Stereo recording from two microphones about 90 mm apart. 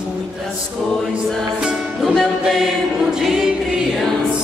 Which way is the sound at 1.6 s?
5° right (ahead or behind).